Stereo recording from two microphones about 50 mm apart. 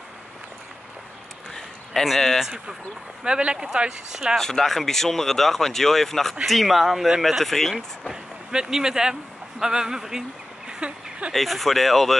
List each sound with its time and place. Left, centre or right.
1.5 s a sound: centre
3.3 s speech: centre
4.4 s speech: centre
8.1 s speech: centre
10.7 s a sound: right
11.3 s speech: centre